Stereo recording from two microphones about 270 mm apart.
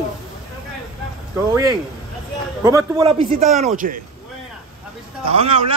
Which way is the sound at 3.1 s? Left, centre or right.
Right.